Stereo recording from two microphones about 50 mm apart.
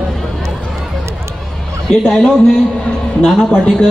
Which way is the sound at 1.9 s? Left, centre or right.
Centre.